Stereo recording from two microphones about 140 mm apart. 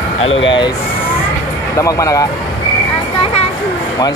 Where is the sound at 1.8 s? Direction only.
25° left (ahead or behind).